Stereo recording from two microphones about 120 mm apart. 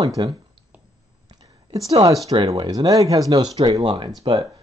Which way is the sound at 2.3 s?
35° right (ahead or behind).